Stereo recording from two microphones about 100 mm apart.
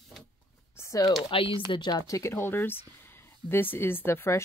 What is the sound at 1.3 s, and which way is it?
Speech, 60° left (ahead or behind).